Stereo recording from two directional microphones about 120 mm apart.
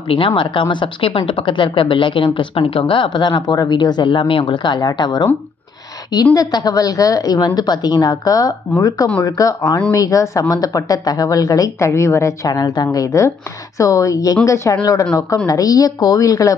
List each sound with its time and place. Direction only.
0.4 s a woman's voice: 45° left (ahead or behind)
6.3 s a woman's voice: 30° left (ahead or behind)